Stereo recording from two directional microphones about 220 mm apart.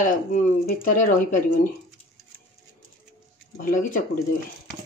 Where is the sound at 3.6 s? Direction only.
35° left (ahead or behind).